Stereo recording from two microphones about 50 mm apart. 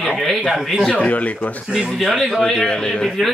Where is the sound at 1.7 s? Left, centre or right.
Centre.